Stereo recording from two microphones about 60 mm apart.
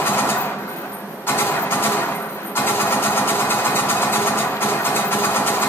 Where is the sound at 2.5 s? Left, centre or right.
Left.